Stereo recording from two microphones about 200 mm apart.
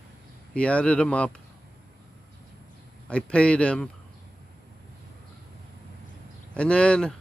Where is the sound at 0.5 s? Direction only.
5° left (ahead or behind).